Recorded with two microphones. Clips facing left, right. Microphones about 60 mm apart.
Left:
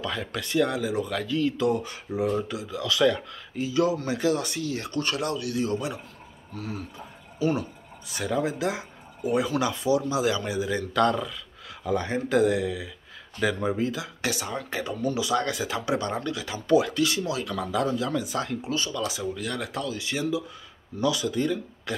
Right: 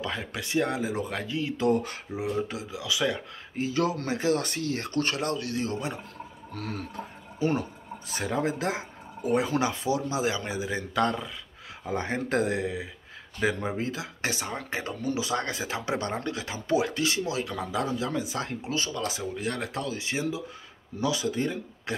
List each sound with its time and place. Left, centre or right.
0.0 s speech: right
1.7 s speech: right
2.1 s speech: centre
2.4 s speech: right
2.7 s speech: centre
3.5 s speech: right
6.5 s speech: right
7.3 s speech: right